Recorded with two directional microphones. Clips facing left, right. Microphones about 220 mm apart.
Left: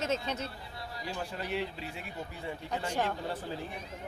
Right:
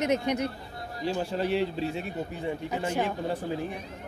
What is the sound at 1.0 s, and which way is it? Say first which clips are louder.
Speech: right 10 dB; 25° right (ahead or behind).